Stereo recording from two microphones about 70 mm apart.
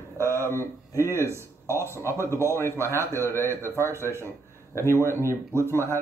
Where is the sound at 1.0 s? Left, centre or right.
Right.